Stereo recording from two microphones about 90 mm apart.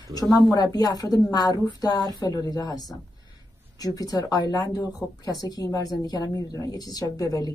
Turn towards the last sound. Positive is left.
turn(degrees=40)  # may be behind; listen again after turning